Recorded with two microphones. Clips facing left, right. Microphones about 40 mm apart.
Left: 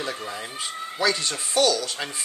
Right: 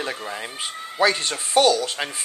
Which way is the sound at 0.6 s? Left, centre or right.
Right.